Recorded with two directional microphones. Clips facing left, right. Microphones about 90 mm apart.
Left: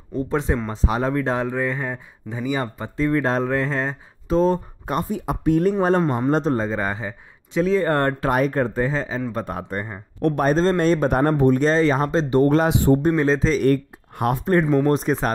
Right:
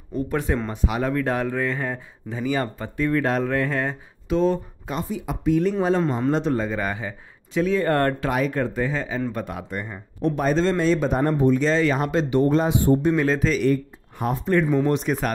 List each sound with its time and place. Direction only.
0.1 s speech: 25° left (ahead or behind)
4.3 s speech: 40° left (ahead or behind)
6.0 s a man's voice: 15° left (ahead or behind)
6.3 s speech: 35° left (ahead or behind)
8.2 s speech: 40° left (ahead or behind)
10.2 s speech: 50° left (ahead or behind)
11.1 s speech: 70° left (ahead or behind); by 12.4 s 35° left (ahead or behind)
12.4 s speech: 75° left (ahead or behind)
13.0 s speech: 30° left (ahead or behind)
13.7 s speech: 65° left (ahead or behind)
14.4 s speech: 40° left (ahead or behind)